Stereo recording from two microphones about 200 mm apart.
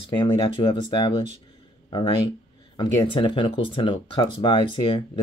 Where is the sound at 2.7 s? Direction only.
25° left (ahead or behind).